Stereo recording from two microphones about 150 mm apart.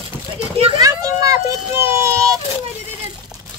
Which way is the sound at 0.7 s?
25° right (ahead or behind).